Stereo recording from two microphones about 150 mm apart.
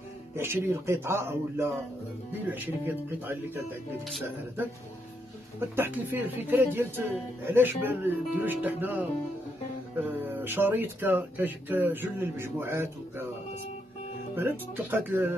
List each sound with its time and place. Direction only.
0.4 s speech: 15° right (ahead or behind)
2.9 s speech: 15° right (ahead or behind)
5.6 s speech: 15° right (ahead or behind)
10.0 s speech: 15° right (ahead or behind)
14.3 s speech: 15° right (ahead or behind)